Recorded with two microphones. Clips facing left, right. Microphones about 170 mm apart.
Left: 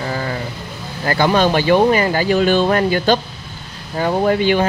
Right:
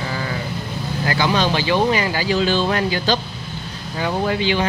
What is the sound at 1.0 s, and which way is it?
Speech, 50° left (ahead or behind).